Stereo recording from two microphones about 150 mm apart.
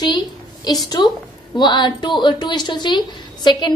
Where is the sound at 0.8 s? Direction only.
30° left (ahead or behind).